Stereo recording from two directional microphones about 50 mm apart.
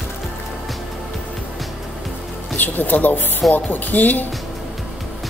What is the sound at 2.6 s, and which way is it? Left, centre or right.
Speech, left.